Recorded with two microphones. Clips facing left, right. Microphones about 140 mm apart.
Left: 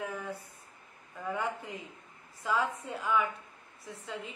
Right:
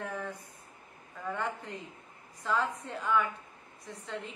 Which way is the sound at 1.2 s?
10° left (ahead or behind).